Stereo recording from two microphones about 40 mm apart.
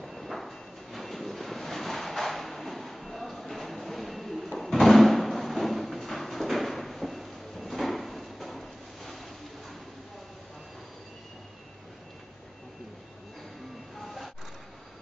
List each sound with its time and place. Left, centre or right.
0.0 s train: centre
14.0 s vehicle: centre